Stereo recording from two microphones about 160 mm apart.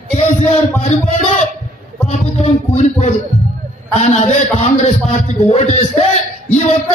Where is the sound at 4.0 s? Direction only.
45° left (ahead or behind).